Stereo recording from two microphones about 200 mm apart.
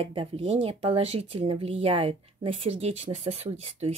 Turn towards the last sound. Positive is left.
turn(degrees=-30)  # may be behind; listen again after turning